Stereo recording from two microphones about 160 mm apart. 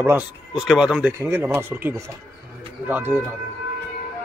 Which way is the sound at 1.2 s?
15° right (ahead or behind).